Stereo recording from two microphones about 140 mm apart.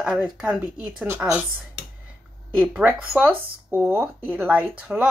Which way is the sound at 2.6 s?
10° right (ahead or behind).